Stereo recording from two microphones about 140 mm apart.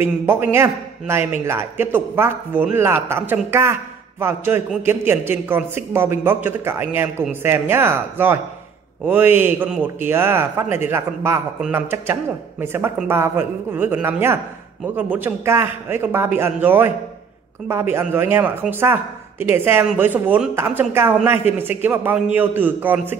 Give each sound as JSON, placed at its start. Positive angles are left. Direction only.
{"t": 0.0, "sound": "a man's voice", "side_deg": -15}